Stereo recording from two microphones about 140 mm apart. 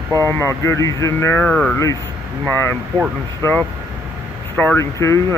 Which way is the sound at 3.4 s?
15° left (ahead or behind).